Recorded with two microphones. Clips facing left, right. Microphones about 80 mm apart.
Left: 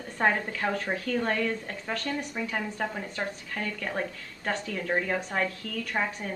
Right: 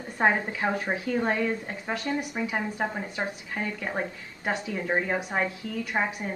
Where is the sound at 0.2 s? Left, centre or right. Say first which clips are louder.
Right 2 dB; right.